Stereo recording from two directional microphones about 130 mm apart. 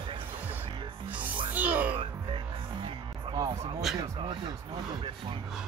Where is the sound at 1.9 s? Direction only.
40° right (ahead or behind).